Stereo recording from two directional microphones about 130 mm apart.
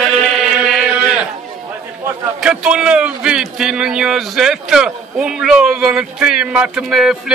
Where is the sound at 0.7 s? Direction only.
Centre (ahead or behind).